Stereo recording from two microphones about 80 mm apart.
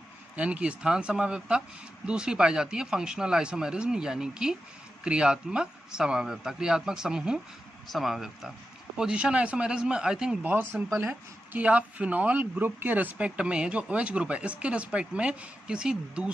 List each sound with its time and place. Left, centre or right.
0.4 s speech: centre
10.4 s speech: right